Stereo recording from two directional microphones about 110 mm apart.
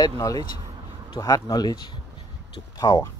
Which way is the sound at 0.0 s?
35° left (ahead or behind).